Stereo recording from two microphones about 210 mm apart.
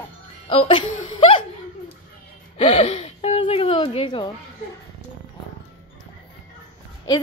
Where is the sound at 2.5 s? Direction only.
30° left (ahead or behind).